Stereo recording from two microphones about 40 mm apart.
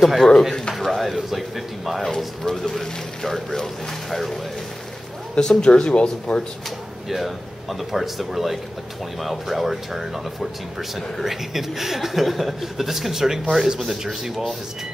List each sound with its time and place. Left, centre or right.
0.0 s speech: centre
2.0 s speech: centre
5.3 s speech: centre
7.1 s speech: centre